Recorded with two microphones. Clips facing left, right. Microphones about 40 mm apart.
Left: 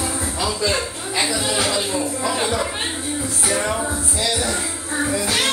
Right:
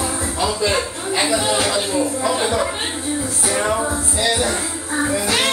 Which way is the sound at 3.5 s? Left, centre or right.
Right.